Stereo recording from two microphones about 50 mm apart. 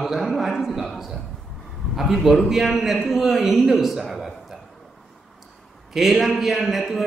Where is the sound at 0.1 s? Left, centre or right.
Centre.